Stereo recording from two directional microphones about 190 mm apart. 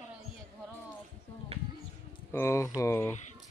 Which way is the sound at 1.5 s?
30° right (ahead or behind).